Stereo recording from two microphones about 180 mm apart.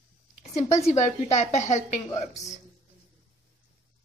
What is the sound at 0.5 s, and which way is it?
A woman's voice, 40° left (ahead or behind).